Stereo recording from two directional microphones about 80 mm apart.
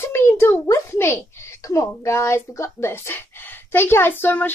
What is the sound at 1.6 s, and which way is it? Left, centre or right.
Speech, left.